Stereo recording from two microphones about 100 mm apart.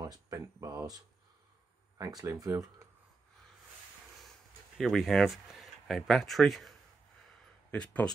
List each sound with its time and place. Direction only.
0.0 s speech: 35° right (ahead or behind)
4.7 s speech: centre (ahead or behind)
7.7 s speech: 10° left (ahead or behind)